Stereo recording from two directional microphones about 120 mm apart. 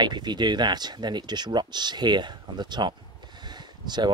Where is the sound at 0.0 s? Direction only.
35° right (ahead or behind).